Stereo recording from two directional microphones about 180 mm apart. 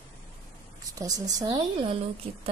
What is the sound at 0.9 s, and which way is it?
A woman's voice, 20° right (ahead or behind).